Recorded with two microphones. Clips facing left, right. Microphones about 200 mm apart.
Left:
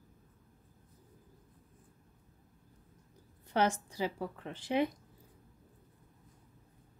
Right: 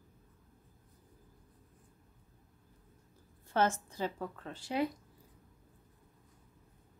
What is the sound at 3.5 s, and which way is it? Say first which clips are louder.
A woman's voice: even; 15° left (ahead or behind).